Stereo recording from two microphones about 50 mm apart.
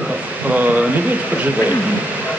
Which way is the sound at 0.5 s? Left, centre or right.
Right.